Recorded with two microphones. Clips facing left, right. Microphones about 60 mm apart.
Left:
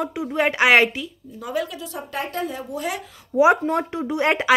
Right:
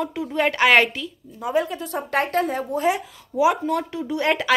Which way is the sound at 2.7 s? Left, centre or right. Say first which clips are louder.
Right 7 dB; right.